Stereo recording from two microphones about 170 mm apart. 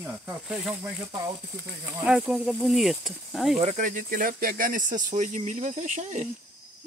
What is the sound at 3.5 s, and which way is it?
Speech, 45° right (ahead or behind).